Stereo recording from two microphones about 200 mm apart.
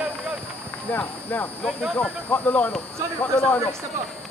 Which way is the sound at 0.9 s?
10° left (ahead or behind).